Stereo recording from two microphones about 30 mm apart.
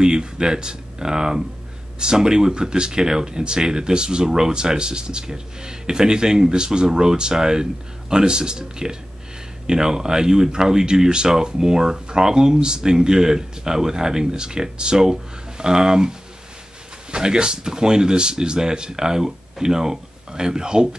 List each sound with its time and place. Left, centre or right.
0.0 s speech: right